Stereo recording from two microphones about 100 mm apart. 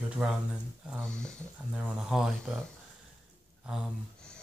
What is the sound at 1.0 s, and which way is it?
Speech, 10° left (ahead or behind).